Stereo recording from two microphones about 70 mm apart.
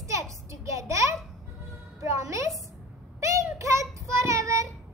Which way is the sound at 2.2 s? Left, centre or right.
Right.